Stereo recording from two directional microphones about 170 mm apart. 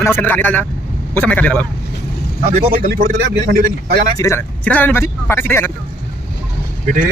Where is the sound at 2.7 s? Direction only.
50° right (ahead or behind).